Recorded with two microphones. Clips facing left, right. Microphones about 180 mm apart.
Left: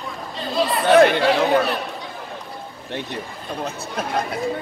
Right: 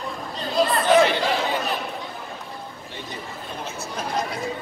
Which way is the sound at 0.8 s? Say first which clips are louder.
Left 7 dB; 60° left (ahead or behind).